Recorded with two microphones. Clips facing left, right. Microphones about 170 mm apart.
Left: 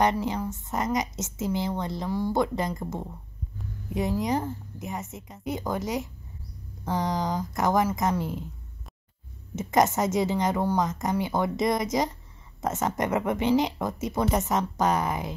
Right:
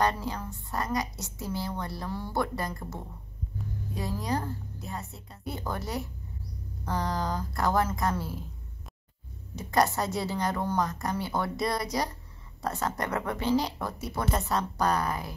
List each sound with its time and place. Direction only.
0.0 s a woman's voice: 20° left (ahead or behind)
9.6 s a woman's voice: 20° left (ahead or behind)